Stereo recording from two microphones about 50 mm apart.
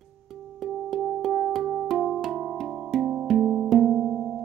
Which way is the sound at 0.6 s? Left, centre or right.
Centre.